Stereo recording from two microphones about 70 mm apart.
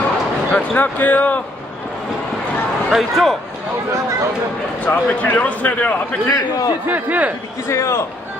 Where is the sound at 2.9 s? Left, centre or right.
Centre.